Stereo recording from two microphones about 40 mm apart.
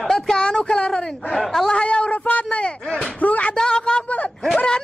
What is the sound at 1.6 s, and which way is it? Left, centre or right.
Speech, left.